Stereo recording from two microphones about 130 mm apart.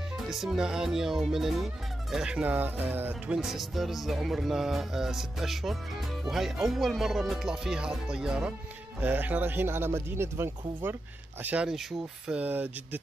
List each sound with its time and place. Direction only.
0.3 s speech: 5° right (ahead or behind)
3.3 s speech: centre (ahead or behind)